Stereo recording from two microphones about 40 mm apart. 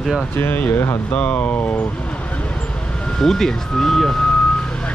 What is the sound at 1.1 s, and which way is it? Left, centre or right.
Speech, left.